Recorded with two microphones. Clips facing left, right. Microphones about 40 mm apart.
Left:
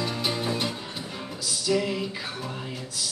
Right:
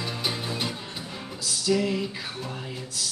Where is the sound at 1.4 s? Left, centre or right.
Centre.